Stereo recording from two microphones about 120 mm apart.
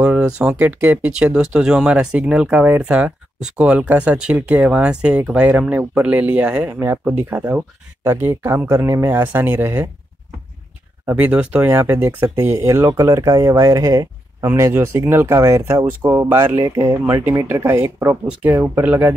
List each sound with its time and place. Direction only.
0.0 s speech: 10° right (ahead or behind)
11.1 s speech: 15° right (ahead or behind)